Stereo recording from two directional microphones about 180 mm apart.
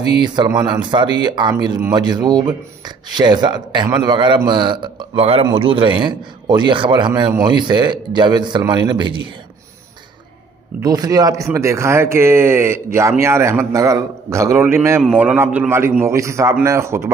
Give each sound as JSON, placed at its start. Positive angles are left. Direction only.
{"t": 0.2, "sound": "speech", "side_deg": -20}
{"t": 10.8, "sound": "a man's voice", "side_deg": -20}